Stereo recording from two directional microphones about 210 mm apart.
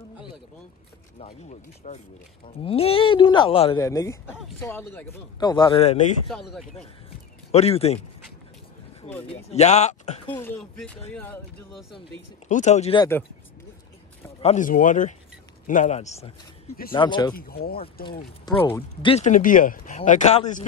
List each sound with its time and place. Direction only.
1.2 s speech: 30° left (ahead or behind)
3.8 s speech: 15° left (ahead or behind); by 6.1 s 35° left (ahead or behind)
6.3 s speech: centre (ahead or behind)
7.5 s speech: 30° left (ahead or behind)
9.3 s speech: 30° left (ahead or behind)
10.4 s speech: centre (ahead or behind)
12.4 s speech: 35° left (ahead or behind)
14.4 s a man's voice: 35° left (ahead or behind); by 17.4 s 20° left (ahead or behind)
17.4 s speech: 45° left (ahead or behind)
18.4 s speech: 10° left (ahead or behind)
19.0 s speech: 35° left (ahead or behind)